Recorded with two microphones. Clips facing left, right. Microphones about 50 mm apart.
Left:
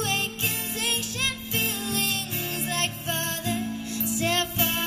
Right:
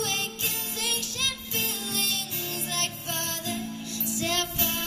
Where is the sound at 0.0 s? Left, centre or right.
Left.